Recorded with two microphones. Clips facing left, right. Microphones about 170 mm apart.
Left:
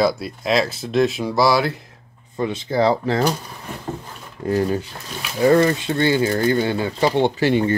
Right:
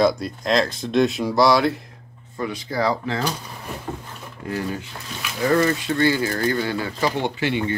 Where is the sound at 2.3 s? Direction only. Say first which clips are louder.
Left 5 dB; 25° left (ahead or behind).